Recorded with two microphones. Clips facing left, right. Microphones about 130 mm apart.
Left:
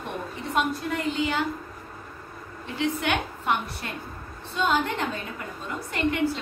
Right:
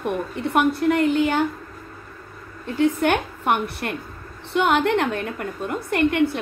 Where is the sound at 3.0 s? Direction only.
55° right (ahead or behind).